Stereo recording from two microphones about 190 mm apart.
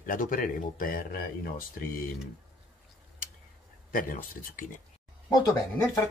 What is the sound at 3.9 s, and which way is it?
Speech, 45° left (ahead or behind).